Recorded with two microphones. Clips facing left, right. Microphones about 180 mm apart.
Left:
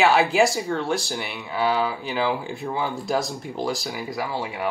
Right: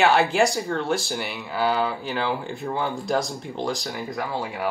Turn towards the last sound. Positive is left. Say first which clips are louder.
# even
turn(degrees=0)  # may be behind; listen again after turning